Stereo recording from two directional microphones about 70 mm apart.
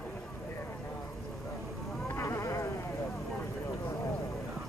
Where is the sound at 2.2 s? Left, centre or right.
Left.